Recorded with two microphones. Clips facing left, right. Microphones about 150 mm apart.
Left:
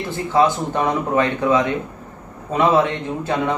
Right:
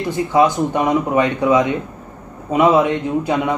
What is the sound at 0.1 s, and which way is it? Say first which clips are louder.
Speech: right 2 dB; 15° right (ahead or behind).